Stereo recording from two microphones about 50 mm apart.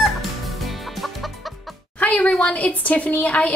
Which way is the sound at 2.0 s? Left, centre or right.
Left.